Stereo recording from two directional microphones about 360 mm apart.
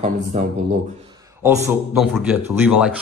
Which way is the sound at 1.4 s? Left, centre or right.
Centre.